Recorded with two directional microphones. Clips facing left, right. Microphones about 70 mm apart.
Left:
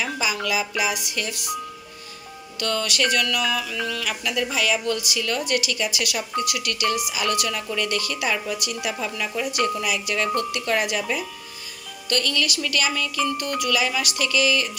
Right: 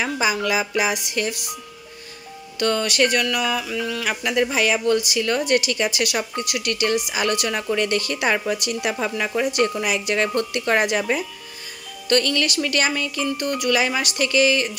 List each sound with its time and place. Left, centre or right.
0.0 s a woman's voice: right
2.6 s music: right
4.1 s a woman's voice: right